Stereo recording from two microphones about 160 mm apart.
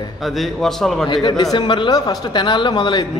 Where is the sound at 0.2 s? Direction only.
Centre (ahead or behind).